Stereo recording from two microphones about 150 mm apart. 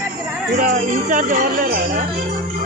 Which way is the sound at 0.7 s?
45° right (ahead or behind).